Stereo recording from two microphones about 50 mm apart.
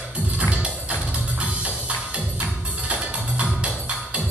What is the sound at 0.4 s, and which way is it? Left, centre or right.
Music, right.